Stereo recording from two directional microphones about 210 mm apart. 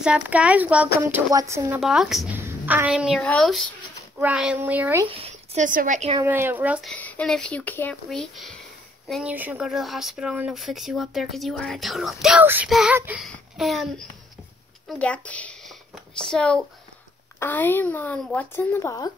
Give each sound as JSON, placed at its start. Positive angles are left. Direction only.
{"t": 0.0, "sound": "speech", "side_deg": -5}
{"t": 1.8, "sound": "a woman's voice", "side_deg": 0}
{"t": 5.0, "sound": "speech", "side_deg": -30}
{"t": 6.1, "sound": "speech", "side_deg": -10}